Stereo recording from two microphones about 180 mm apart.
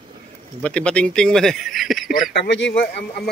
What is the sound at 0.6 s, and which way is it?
Speech, 5° left (ahead or behind).